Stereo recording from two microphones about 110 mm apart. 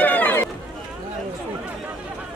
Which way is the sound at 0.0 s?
15° left (ahead or behind).